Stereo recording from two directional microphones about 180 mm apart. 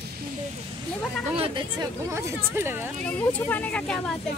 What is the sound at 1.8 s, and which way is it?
Speech, 15° right (ahead or behind).